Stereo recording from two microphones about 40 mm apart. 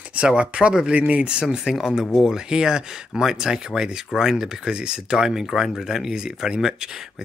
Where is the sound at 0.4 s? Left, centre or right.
Right.